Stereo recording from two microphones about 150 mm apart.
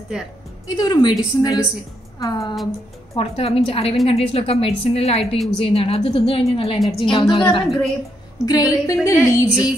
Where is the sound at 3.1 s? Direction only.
40° left (ahead or behind).